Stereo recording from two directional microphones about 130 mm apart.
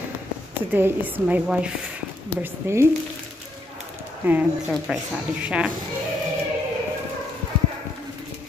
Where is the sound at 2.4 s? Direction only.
20° right (ahead or behind).